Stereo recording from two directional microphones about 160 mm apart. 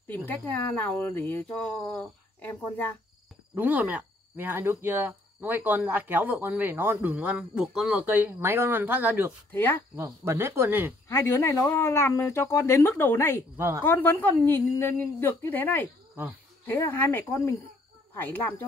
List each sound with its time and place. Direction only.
0.0 s speech: 10° left (ahead or behind)
3.5 s speech: 10° right (ahead or behind)
9.5 s speech: 10° left (ahead or behind)
9.9 s speech: 20° right (ahead or behind)
11.1 s speech: 15° left (ahead or behind)
13.6 s speech: 15° right (ahead or behind)
13.8 s speech: 10° left (ahead or behind)